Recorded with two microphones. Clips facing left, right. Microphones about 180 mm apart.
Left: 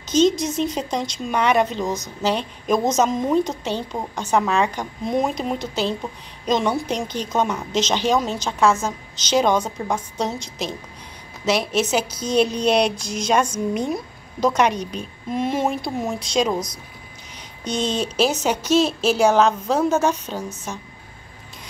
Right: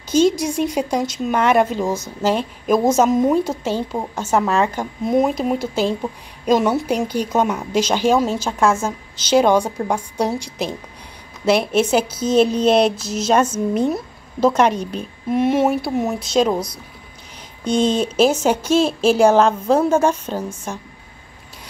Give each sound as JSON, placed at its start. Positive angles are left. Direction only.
{"t": 0.1, "sound": "a woman's voice", "side_deg": -10}
{"t": 11.4, "sound": "speech", "side_deg": -55}
{"t": 12.2, "sound": "speech", "side_deg": -5}
{"t": 17.6, "sound": "speech", "side_deg": -50}
{"t": 19.3, "sound": "a woman's voice", "side_deg": -5}